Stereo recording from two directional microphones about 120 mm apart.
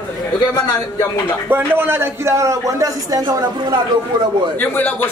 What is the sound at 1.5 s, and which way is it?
A man's voice, 20° right (ahead or behind).